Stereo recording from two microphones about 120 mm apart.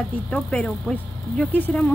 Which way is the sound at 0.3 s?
10° left (ahead or behind).